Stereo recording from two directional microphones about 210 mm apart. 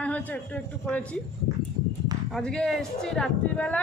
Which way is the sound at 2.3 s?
5° left (ahead or behind).